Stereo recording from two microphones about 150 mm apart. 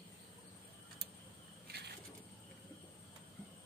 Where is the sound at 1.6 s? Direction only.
90° right.